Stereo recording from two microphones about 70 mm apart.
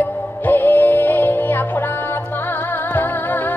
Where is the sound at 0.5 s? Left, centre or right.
Left.